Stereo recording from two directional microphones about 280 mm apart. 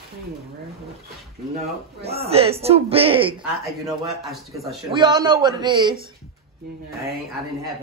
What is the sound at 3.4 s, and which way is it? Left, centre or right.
Speech, centre.